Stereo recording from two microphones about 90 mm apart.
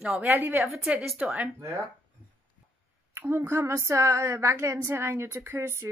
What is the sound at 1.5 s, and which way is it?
Speech, 30° right (ahead or behind).